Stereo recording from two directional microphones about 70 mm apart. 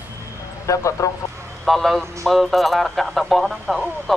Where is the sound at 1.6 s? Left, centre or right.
Centre.